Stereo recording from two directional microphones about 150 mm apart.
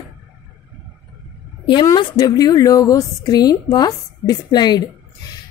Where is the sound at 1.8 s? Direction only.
25° left (ahead or behind).